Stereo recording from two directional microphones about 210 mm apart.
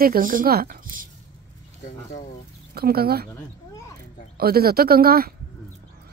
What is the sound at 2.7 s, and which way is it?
Speech, 45° right (ahead or behind).